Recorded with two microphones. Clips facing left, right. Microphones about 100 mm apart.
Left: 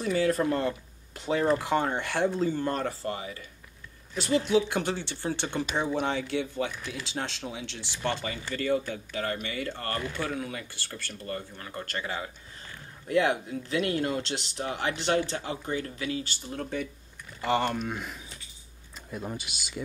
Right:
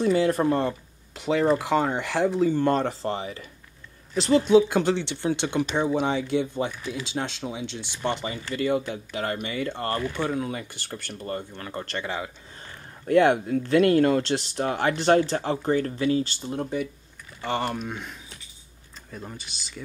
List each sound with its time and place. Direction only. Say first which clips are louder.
0.0 s speech: right 4 dB; 30° right (ahead or behind)
0.5 s speech: right 4 dB; 20° right (ahead or behind)
2.5 s speech: right 7 dB; 25° right (ahead or behind)
4.5 s speech: right 7 dB; 25° right (ahead or behind)
13.1 s speech: right 7 dB; 35° right (ahead or behind)
17.4 s speech: left 1 dB; centre (ahead or behind)
19.1 s speech: left 3 dB; 10° left (ahead or behind)